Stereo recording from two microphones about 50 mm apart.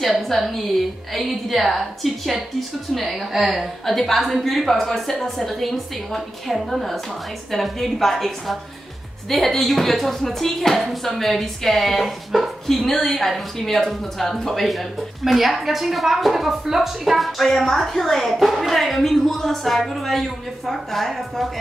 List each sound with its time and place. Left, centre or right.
0.0 s speech: centre